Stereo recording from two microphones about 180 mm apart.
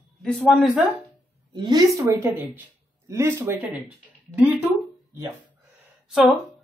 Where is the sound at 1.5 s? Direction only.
25° right (ahead or behind); by 4.6 s 5° right (ahead or behind).